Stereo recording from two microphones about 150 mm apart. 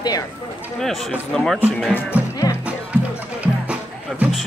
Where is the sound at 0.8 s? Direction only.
Centre (ahead or behind).